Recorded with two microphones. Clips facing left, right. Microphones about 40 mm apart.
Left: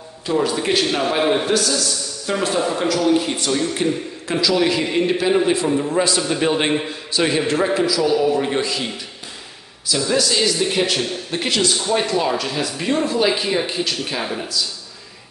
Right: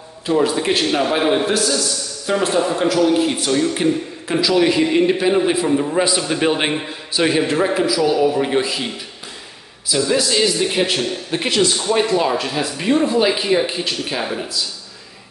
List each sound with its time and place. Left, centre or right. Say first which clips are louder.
0.3 s a man's voice: right 2 dB; centre
9.8 s a man's voice: right 1 dB; centre